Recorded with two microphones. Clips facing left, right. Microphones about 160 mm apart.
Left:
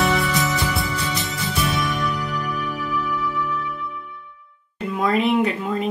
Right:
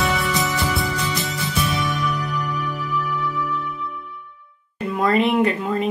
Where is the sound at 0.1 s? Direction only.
Centre (ahead or behind).